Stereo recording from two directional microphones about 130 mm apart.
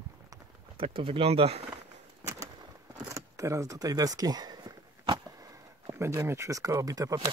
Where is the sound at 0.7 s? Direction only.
45° right (ahead or behind).